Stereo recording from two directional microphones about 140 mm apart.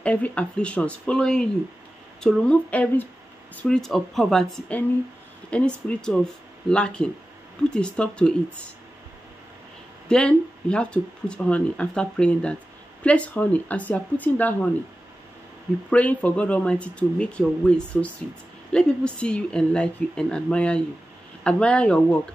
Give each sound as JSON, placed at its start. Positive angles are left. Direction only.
{"t": 0.0, "sound": "speech", "side_deg": 10}
{"t": 10.0, "sound": "speech", "side_deg": 5}
{"t": 15.9, "sound": "speech", "side_deg": 10}